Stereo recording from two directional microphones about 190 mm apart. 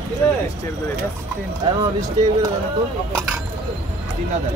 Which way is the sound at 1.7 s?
20° right (ahead or behind).